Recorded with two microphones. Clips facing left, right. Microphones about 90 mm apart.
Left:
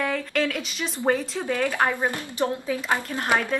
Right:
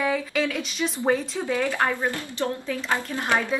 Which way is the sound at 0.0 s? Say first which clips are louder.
Right 1 dB; 5° right (ahead or behind).